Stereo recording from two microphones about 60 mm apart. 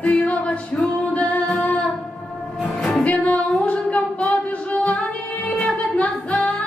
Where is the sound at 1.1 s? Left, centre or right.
Left.